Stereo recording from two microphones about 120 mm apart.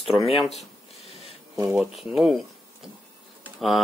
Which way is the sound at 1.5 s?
25° right (ahead or behind).